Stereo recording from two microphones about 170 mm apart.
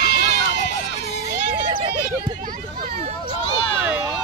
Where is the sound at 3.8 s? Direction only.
10° right (ahead or behind).